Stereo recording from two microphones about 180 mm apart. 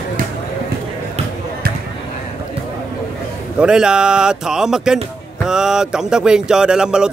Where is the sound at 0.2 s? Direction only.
55° right (ahead or behind).